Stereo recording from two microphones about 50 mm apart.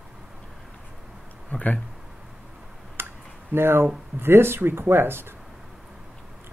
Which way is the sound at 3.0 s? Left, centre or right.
Right.